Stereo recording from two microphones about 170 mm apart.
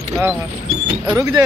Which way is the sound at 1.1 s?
15° right (ahead or behind).